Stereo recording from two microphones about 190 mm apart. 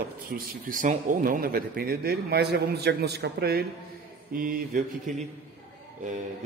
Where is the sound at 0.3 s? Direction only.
45° right (ahead or behind).